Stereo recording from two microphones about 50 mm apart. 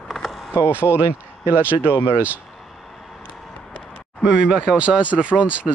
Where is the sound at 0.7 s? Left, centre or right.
Left.